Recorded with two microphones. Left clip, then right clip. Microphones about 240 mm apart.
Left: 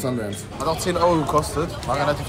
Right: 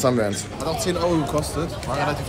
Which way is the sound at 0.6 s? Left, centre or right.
Centre.